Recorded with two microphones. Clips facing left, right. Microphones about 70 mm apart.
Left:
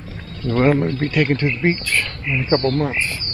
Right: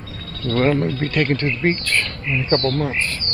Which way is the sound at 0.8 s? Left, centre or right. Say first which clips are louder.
Left 1 dB; centre.